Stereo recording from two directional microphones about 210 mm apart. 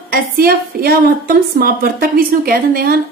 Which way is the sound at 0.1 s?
45° right (ahead or behind).